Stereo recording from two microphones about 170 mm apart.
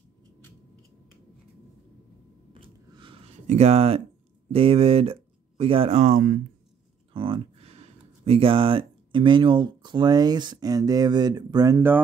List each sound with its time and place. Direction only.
2.5 s a sound: 30° right (ahead or behind)
3.4 s speech: 40° right (ahead or behind)
7.2 s speech: 30° right (ahead or behind); by 12.0 s 15° right (ahead or behind)